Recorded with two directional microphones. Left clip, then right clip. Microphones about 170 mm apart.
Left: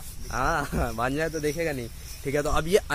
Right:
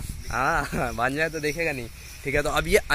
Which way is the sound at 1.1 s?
Centre (ahead or behind).